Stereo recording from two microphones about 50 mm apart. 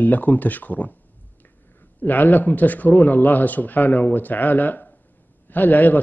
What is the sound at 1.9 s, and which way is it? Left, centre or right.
Speech, left.